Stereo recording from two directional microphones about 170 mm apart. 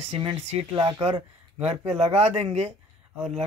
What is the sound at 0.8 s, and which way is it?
Speech, 25° right (ahead or behind).